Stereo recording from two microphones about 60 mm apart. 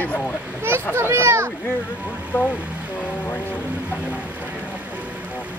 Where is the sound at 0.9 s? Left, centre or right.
Right.